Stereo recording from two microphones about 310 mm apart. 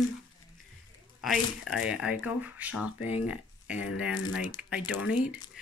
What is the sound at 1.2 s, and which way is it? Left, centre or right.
Speech, centre.